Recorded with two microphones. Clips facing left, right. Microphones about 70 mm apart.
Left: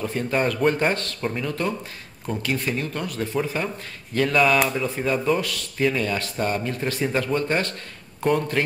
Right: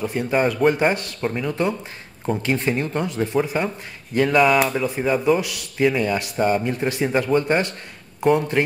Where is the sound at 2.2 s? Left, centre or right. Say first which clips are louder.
Right 4 dB; right.